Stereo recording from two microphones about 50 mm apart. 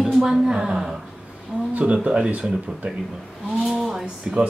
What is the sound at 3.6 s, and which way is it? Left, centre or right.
Speech, centre.